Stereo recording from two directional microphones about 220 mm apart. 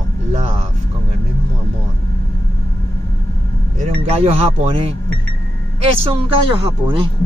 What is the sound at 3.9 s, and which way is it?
Speech, 30° right (ahead or behind).